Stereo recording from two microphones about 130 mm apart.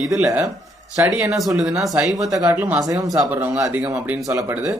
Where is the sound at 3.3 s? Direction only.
15° right (ahead or behind).